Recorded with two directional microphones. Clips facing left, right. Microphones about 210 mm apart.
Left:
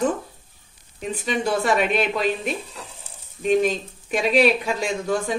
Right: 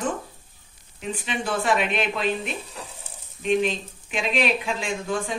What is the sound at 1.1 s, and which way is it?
Speech, 40° left (ahead or behind).